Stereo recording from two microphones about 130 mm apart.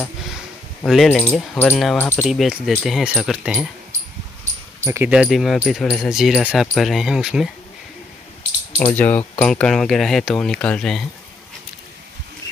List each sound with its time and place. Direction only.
0.8 s speech: centre (ahead or behind)
2.0 s speech: 20° left (ahead or behind)
2.2 s speech: 5° right (ahead or behind)
4.8 s speech: 20° right (ahead or behind)
5.1 s speech: 5° right (ahead or behind)
8.9 s speech: 10° left (ahead or behind)